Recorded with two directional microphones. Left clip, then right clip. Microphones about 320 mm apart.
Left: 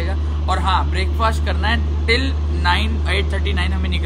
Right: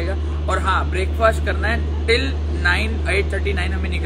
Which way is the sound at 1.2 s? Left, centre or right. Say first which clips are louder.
Right 3 dB; left.